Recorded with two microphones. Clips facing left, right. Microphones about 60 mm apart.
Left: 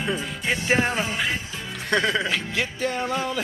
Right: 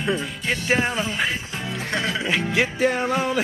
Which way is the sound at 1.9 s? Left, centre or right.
Left.